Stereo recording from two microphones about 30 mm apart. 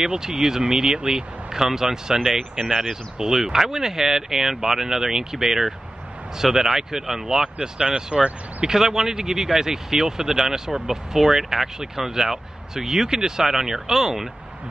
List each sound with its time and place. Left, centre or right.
0.0 s speech: right
7.8 s speech: right
8.6 s speech: centre